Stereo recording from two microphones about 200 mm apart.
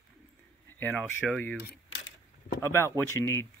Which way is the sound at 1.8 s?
65° left (ahead or behind).